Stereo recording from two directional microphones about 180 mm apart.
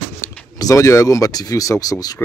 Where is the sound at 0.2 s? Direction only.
15° left (ahead or behind).